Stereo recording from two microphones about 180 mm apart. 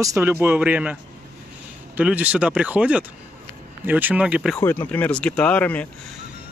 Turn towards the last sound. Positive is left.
turn(degrees=10)  # may be behind; listen again after turning